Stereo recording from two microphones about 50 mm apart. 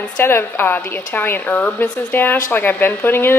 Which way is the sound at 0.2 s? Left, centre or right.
Left.